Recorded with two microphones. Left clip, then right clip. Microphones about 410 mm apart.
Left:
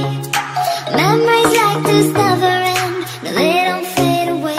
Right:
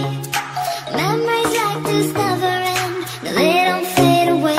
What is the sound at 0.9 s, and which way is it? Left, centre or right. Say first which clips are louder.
Music: left 6 dB; left.